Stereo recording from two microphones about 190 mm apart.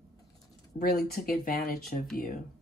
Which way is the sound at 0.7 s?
45° left (ahead or behind).